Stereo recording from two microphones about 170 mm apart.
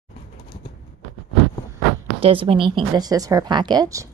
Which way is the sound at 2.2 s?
30° right (ahead or behind).